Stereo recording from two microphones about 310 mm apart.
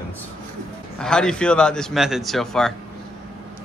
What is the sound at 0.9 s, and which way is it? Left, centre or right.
A man's voice, centre.